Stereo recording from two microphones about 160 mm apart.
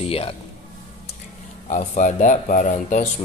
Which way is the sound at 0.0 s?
35° left (ahead or behind).